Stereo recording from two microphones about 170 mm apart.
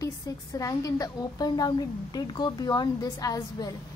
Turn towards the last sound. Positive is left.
turn(degrees=20)  # may be behind; listen again after turning